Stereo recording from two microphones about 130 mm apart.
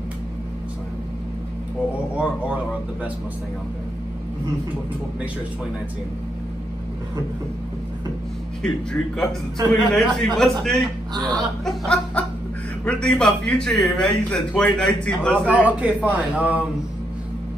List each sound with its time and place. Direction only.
2.1 s speech: 10° right (ahead or behind)
8.6 s a man's voice: 5° left (ahead or behind)
11.1 s speech: 30° right (ahead or behind)
11.6 s snicker: 5° left (ahead or behind)
12.8 s speech: 5° left (ahead or behind)
15.8 s speech: 10° right (ahead or behind)